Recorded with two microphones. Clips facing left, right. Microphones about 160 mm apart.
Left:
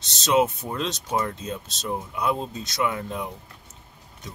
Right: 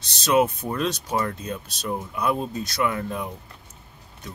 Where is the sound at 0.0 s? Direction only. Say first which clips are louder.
Right 1 dB; 20° left (ahead or behind).